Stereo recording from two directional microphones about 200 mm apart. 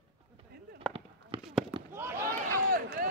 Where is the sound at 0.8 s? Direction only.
Centre (ahead or behind).